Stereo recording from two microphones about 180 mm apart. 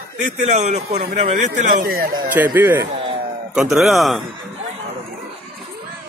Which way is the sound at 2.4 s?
10° right (ahead or behind).